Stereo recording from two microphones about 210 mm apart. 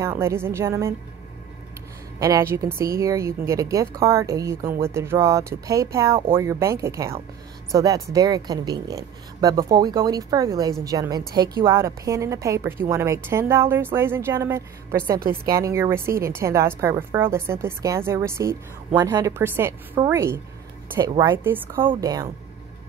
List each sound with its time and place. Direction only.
0.0 s a woman's voice: 15° right (ahead or behind)
2.1 s a woman's voice: 15° right (ahead or behind)
15.1 s a woman's voice: 45° right (ahead or behind)
15.5 s a woman's voice: 15° right (ahead or behind)